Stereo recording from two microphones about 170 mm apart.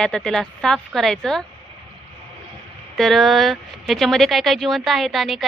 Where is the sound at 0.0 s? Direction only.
5° left (ahead or behind).